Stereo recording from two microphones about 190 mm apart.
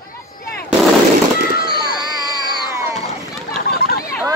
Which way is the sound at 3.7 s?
55° left (ahead or behind).